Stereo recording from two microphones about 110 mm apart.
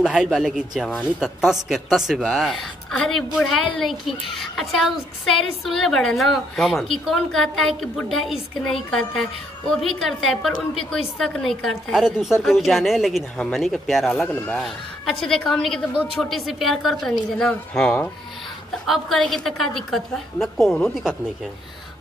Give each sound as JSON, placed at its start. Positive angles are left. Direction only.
{"t": 0.0, "sound": "a woman's voice", "side_deg": -10}
{"t": 14.2, "sound": "speech", "side_deg": 15}
{"t": 14.6, "sound": "a woman's voice", "side_deg": 5}